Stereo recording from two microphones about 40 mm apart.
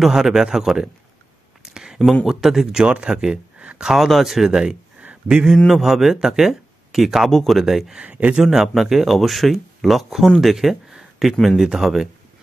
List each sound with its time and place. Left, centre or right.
0.0 s speech: centre
1.7 s a sound: centre
2.2 s speech: centre
2.9 s speech: right
3.5 s a sound: right
3.8 s speech: centre
8.1 s speech: right
8.5 s speech: centre